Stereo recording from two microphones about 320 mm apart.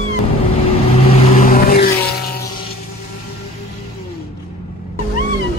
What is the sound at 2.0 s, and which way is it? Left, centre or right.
Music, left.